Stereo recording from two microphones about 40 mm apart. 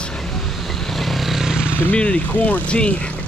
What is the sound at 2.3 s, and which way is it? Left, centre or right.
Speech, left.